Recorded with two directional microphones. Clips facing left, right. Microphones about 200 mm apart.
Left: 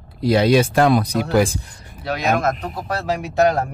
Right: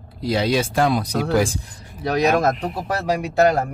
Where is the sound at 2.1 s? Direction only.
35° right (ahead or behind).